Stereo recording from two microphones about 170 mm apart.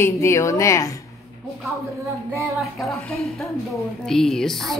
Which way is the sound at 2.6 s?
Centre (ahead or behind).